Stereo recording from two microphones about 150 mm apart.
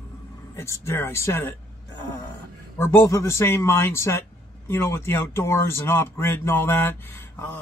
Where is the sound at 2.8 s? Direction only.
15° left (ahead or behind).